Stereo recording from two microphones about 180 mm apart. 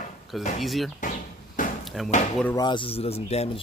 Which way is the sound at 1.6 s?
50° left (ahead or behind).